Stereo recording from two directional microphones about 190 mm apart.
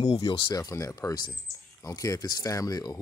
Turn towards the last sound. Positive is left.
turn(degrees=20)  # may be behind; listen again after turning